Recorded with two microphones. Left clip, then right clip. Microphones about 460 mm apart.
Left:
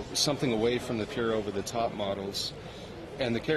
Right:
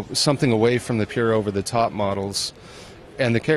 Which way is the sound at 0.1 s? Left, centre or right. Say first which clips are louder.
Right 8 dB; right.